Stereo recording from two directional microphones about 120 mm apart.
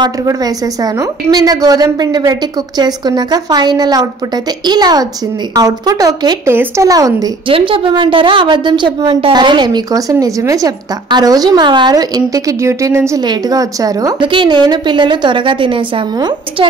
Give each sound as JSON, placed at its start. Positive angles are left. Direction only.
{"t": 1.3, "sound": "a woman's voice", "side_deg": -30}
{"t": 6.5, "sound": "speech", "side_deg": -20}
{"t": 6.9, "sound": "a woman's voice", "side_deg": -30}
{"t": 7.4, "sound": "a woman's voice", "side_deg": -45}
{"t": 10.1, "sound": "a woman's voice", "side_deg": -25}